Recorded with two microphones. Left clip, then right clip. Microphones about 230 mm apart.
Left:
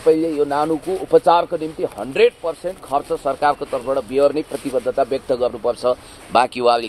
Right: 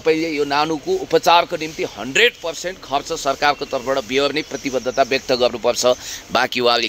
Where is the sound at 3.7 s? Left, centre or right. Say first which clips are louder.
Even; right.